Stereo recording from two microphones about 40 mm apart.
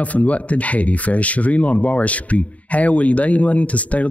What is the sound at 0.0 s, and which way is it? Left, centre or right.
Speech, left.